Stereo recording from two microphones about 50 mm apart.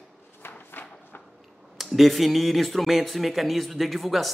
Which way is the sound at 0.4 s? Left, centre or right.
Left.